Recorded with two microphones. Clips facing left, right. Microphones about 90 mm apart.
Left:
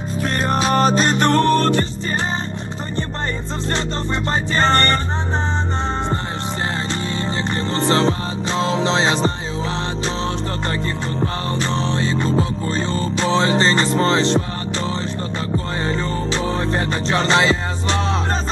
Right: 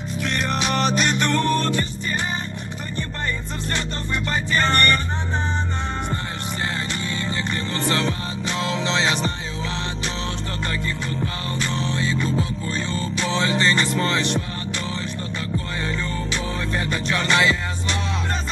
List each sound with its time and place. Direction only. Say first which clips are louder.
0.2 s music: left 5 dB; 35° left (ahead or behind)
3.7 s music: left 4 dB; 30° left (ahead or behind)
7.2 s music: left 5 dB; 30° left (ahead or behind)
10.7 s music: left 4 dB; 35° left (ahead or behind)
15.5 s music: left 5 dB; 35° left (ahead or behind)